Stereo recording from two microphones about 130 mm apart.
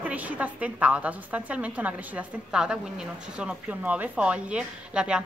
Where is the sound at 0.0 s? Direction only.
10° right (ahead or behind).